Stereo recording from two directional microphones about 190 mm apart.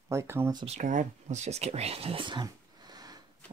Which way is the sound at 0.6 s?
35° right (ahead or behind).